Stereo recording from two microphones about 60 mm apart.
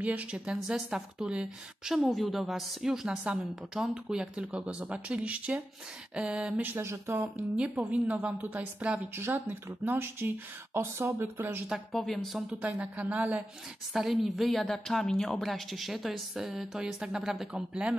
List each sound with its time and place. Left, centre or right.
0.0 s speech: right
0.6 s a woman's voice: centre
2.0 s a woman's voice: centre
6.6 s speech: right
7.5 s speech: centre
9.1 s speech: right
11.9 s a woman's voice: centre
12.4 s speech: right
13.9 s a woman's voice: centre